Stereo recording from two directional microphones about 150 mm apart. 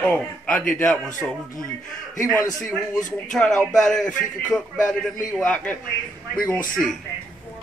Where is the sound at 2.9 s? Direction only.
55° left (ahead or behind).